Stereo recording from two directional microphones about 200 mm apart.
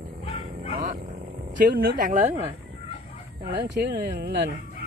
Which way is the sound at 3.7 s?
55° right (ahead or behind).